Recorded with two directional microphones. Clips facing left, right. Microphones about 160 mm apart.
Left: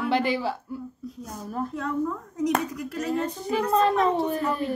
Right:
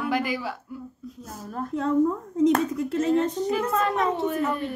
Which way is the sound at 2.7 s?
25° right (ahead or behind).